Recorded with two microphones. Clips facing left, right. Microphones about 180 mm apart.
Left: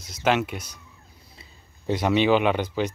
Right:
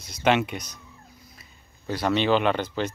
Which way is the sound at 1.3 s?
25° left (ahead or behind).